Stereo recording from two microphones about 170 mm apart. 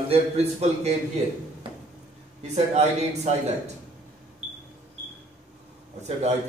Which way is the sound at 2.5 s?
40° right (ahead or behind).